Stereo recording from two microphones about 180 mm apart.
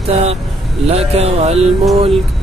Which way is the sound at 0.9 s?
35° right (ahead or behind).